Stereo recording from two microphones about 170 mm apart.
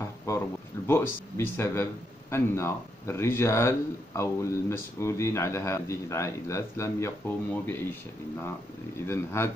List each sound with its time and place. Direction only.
0.8 s speech: 15° left (ahead or behind)
9.0 s speech: 15° left (ahead or behind)